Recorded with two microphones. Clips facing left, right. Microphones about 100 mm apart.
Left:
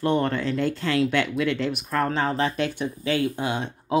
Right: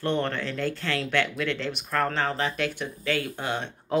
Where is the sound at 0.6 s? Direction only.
20° left (ahead or behind).